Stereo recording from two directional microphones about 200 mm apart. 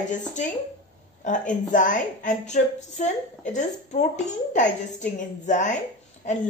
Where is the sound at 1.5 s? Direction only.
40° left (ahead or behind).